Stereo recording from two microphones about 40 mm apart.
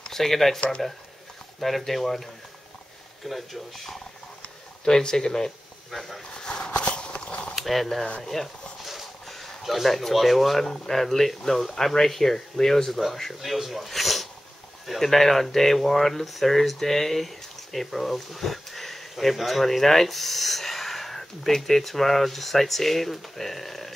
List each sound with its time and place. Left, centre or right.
0.0 s speech: centre
1.6 s speech: centre
3.3 s speech: centre
4.8 s speech: centre
5.9 s speech: centre
6.3 s walk: centre
7.5 s speech: centre
8.8 s a sound: centre
10.9 s speech: centre